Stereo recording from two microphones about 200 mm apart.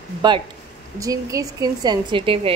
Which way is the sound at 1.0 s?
15° right (ahead or behind).